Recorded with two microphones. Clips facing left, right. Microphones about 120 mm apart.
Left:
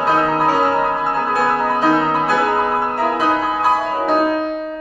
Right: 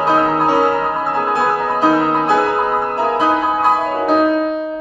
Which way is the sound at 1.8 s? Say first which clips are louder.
Right 4 dB; 25° right (ahead or behind).